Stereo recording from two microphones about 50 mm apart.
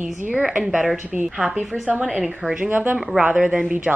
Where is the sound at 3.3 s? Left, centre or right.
Centre.